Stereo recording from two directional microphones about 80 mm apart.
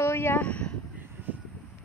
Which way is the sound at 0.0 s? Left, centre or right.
Left.